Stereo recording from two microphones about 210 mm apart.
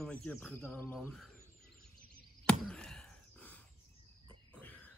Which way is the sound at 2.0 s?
45° right (ahead or behind).